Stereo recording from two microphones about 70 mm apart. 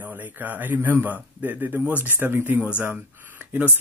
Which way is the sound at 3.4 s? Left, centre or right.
Right.